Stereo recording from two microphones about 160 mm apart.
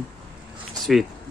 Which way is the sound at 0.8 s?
Centre (ahead or behind).